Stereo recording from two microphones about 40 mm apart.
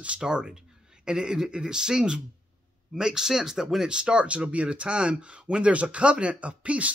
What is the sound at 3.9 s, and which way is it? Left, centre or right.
Speech, right.